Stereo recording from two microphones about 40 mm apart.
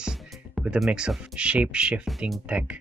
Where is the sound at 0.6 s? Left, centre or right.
Centre.